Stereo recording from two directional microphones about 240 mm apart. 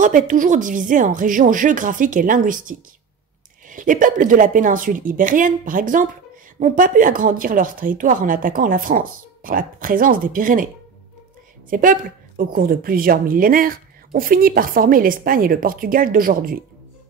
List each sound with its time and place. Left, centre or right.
0.0 s speech: right
11.7 s speech: right